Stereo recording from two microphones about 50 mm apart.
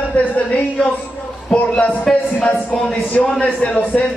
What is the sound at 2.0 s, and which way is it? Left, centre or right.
A man's voice, centre.